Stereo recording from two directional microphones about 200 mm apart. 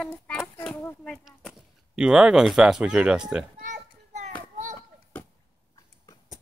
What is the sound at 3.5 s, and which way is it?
Children playing, 40° right (ahead or behind).